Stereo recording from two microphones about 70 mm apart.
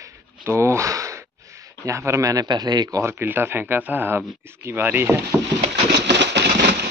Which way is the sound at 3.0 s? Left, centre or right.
Right.